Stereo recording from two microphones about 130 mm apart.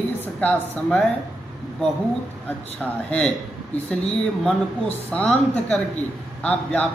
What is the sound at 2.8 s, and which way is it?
Speech, 10° left (ahead or behind).